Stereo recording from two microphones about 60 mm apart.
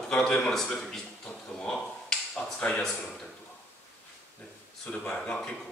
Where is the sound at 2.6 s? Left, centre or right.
Centre.